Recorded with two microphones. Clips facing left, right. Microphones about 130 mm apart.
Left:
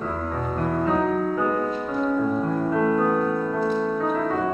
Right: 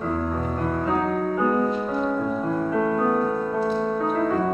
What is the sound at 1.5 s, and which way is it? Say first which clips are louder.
Music: right 2 dB; 10° right (ahead or behind).